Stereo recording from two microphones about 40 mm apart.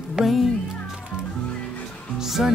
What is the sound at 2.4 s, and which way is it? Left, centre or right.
Speech, centre.